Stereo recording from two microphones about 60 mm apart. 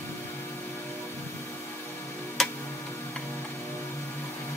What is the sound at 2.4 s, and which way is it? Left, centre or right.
Tick-tock, centre.